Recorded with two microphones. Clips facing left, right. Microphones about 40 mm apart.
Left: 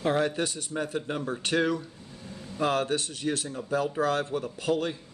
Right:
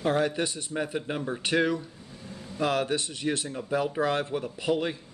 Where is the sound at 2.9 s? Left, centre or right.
Right.